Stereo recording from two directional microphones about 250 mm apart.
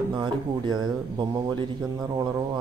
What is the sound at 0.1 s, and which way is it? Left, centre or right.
Speech, centre.